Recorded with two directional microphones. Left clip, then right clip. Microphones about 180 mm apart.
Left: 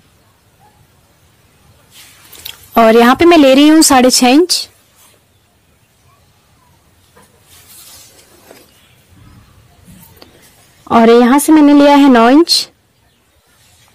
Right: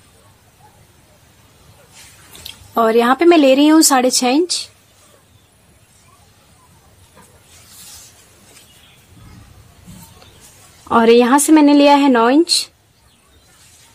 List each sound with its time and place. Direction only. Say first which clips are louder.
2.4 s speech: left 7 dB; 50° left (ahead or behind)
10.9 s speech: left 3 dB; 35° left (ahead or behind)